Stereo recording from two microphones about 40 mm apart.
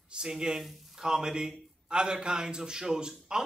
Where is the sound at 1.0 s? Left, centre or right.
Centre.